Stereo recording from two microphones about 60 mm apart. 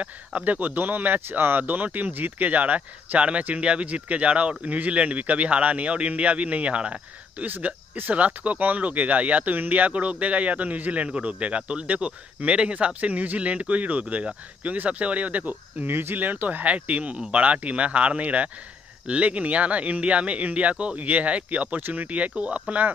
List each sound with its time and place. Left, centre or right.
0.0 s speech: right